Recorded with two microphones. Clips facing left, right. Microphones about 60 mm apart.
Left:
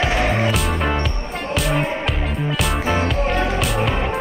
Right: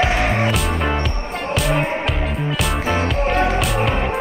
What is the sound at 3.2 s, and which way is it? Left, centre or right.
Music, right.